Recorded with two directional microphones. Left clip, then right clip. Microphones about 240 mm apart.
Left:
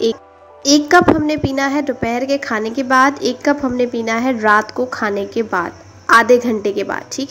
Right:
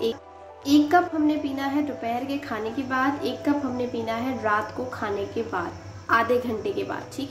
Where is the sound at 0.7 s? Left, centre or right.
Left.